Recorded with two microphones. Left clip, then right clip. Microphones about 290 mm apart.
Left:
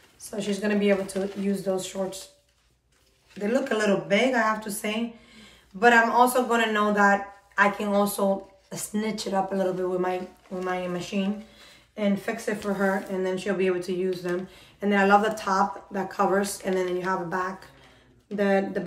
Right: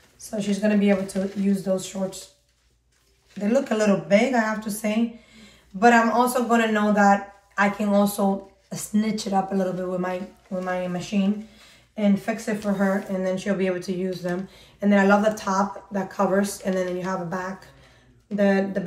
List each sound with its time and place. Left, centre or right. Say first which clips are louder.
0.2 s a woman's voice: right 3 dB; centre
3.3 s a woman's voice: right 3 dB; centre